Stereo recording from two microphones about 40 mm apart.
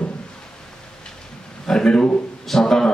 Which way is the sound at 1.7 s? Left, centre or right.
Centre.